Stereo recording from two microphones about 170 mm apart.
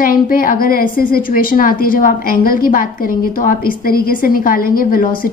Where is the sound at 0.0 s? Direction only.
55° left (ahead or behind).